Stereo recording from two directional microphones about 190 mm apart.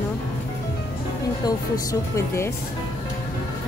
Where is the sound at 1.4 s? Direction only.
15° left (ahead or behind).